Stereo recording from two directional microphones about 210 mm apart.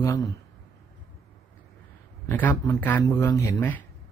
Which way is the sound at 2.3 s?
10° left (ahead or behind).